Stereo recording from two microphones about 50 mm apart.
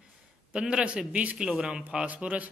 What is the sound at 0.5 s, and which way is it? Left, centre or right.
A man's voice, centre.